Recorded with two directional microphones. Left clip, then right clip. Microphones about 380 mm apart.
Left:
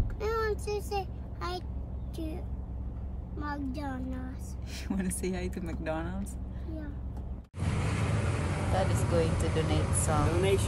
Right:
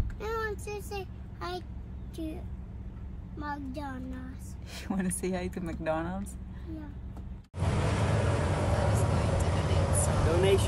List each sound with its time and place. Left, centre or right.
0.2 s child singing: centre
3.3 s speech: centre
7.5 s vehicle: right
9.7 s speech: right
10.1 s speech: centre